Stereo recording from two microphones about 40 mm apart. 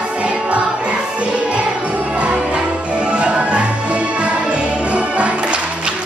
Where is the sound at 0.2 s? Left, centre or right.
Right.